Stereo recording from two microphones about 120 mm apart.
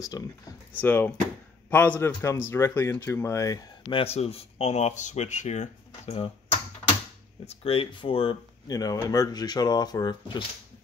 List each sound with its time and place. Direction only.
0.0 s speech: 30° left (ahead or behind)
0.7 s a man's voice: 15° left (ahead or behind)
3.9 s speech: 55° left (ahead or behind); by 5.7 s 85° left
6.0 s a sound: 50° left (ahead or behind)
7.4 s speech: 50° left (ahead or behind)
8.6 s speech: 30° left (ahead or behind)